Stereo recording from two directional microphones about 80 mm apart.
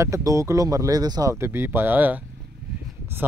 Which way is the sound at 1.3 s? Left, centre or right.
Right.